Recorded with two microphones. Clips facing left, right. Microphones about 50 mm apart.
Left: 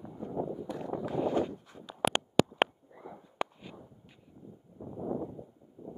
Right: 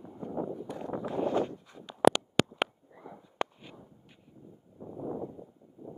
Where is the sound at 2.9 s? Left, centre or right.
Centre.